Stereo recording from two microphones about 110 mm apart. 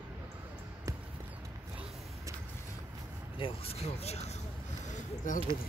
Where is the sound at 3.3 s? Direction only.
55° left (ahead or behind); by 4.3 s 75° left (ahead or behind).